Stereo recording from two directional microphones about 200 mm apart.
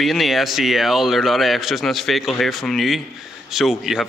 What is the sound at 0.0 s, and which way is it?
Speech, centre (ahead or behind).